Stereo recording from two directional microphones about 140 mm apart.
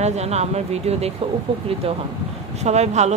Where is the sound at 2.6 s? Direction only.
50° right (ahead or behind).